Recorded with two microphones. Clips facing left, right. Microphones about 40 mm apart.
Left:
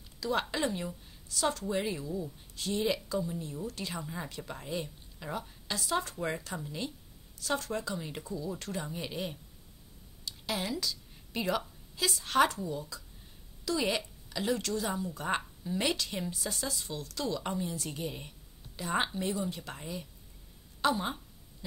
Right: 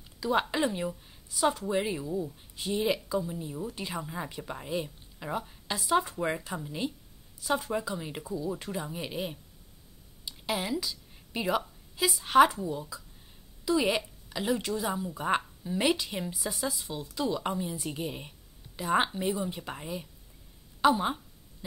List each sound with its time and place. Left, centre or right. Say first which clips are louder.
0.2 s a woman's voice: right 4 dB; centre